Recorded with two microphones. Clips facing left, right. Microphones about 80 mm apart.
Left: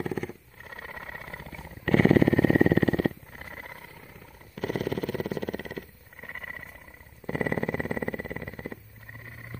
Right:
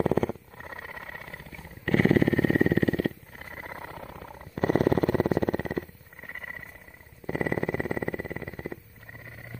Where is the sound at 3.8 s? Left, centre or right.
Right.